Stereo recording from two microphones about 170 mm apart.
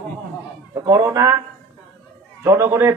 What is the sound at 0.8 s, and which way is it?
Speech, 20° right (ahead or behind).